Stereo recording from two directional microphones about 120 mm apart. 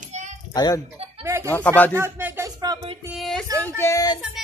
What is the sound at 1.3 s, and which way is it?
Speech, 25° right (ahead or behind).